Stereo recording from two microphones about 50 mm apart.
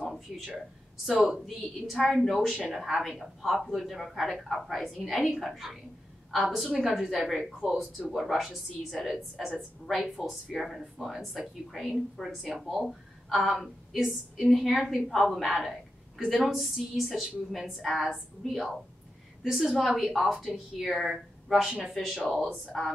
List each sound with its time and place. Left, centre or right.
1.4 s a woman's voice: centre
20.3 s a woman's voice: centre
20.8 s a woman's voice: centre